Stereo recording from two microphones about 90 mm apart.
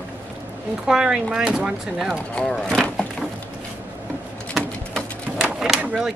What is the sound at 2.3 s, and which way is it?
Speech, 10° left (ahead or behind).